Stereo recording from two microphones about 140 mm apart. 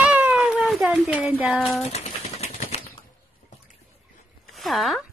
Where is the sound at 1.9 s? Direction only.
50° left (ahead or behind).